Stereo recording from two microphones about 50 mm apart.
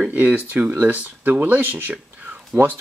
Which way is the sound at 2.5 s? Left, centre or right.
Right.